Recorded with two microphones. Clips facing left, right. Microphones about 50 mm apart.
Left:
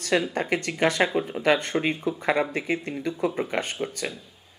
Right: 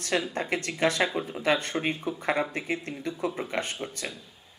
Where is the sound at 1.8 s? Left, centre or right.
Centre.